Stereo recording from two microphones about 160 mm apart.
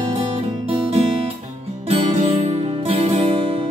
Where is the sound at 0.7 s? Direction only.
40° right (ahead or behind).